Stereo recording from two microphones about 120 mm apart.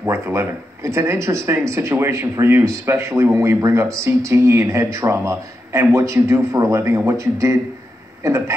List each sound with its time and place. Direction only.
0.0 s speech: 20° right (ahead or behind)